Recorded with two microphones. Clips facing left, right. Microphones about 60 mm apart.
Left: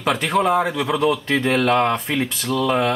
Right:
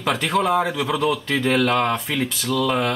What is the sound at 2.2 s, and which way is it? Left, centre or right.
Speech, centre.